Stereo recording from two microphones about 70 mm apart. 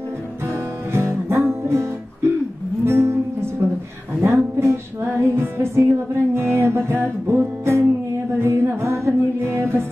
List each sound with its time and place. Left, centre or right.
0.9 s music: right